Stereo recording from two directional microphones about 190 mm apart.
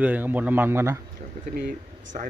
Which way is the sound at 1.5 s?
50° right (ahead or behind).